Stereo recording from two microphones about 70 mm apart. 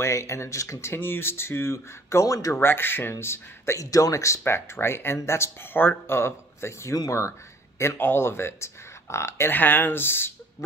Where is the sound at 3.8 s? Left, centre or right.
Left.